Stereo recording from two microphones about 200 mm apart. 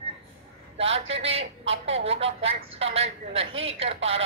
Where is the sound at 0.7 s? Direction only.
30° right (ahead or behind).